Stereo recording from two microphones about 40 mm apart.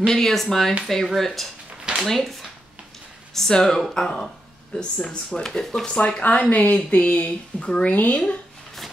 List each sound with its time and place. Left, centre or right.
0.0 s speech: centre
3.3 s speech: centre
4.7 s speech: left
5.3 s speech: centre
5.9 s speech: left
7.6 s speech: left
7.9 s speech: left